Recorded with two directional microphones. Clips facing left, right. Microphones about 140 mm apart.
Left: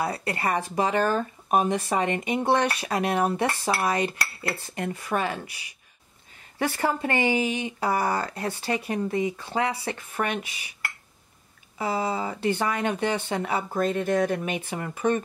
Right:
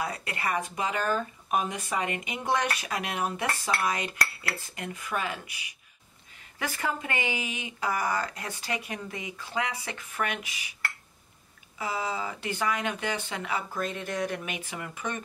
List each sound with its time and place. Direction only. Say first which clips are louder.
0.0 s speech: left 5 dB; 35° left (ahead or behind)
11.8 s speech: left 5 dB; 30° left (ahead or behind)
13.9 s speech: left 8 dB; 50° left (ahead or behind)
14.7 s speech: left 13 dB; 35° left (ahead or behind)